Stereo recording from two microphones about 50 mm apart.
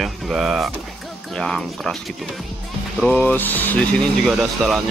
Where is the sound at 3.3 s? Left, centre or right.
Left.